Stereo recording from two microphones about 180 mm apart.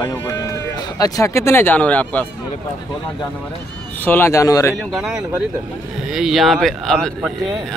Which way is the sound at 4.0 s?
10° left (ahead or behind).